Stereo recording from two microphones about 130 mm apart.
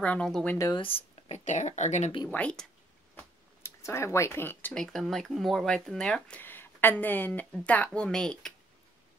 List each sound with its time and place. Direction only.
0.0 s speech: 10° left (ahead or behind)
0.7 s a sound: 45° left (ahead or behind)
1.4 s speech: 65° left (ahead or behind)
2.2 s speech: 10° left (ahead or behind)
3.2 s a sound: 20° left (ahead or behind)
4.7 s speech: centre (ahead or behind)